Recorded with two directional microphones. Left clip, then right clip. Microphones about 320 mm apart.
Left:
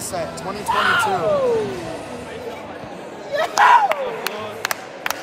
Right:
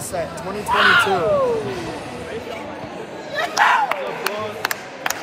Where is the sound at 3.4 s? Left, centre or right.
Left.